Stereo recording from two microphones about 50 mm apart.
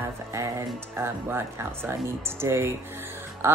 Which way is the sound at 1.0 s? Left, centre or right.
Right.